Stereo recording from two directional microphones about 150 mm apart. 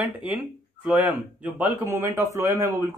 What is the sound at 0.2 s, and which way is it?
Speech, 10° right (ahead or behind).